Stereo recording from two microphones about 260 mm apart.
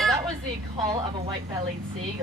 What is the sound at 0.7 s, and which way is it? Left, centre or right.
Speech, centre.